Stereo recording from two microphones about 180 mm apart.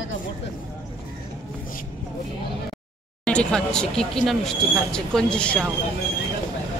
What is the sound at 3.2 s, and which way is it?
Speech, 5° left (ahead or behind).